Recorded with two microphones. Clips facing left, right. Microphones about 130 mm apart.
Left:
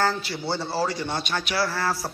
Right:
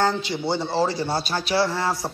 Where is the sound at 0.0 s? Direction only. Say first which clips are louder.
Right 3 dB; 20° right (ahead or behind).